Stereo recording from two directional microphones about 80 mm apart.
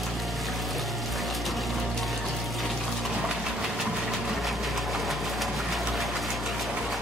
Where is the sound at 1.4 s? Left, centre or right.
Centre.